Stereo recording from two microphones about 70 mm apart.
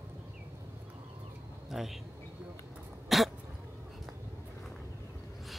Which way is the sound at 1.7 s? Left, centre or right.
Centre.